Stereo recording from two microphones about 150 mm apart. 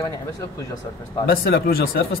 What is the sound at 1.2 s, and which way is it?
Speech, 90° left.